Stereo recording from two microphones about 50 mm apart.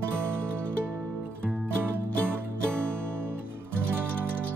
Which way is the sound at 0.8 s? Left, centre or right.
Right.